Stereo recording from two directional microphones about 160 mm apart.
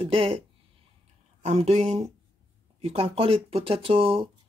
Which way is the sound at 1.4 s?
45° right (ahead or behind).